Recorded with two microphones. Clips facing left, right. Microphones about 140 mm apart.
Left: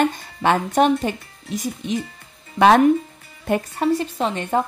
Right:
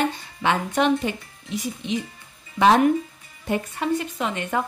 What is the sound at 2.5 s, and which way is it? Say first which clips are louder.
Speech: left 3 dB; 60° left (ahead or behind).